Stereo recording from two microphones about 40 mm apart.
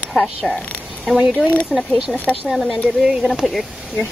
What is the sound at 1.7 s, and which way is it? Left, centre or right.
Speech, centre.